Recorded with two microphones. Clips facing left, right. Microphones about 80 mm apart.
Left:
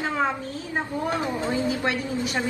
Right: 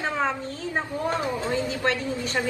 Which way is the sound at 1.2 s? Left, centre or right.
Left.